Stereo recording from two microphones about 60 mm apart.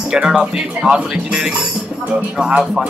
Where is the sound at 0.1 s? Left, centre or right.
Centre.